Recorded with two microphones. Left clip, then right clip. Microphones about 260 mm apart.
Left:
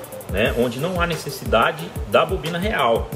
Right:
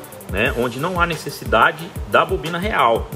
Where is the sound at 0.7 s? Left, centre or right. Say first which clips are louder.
Right 3 dB; centre.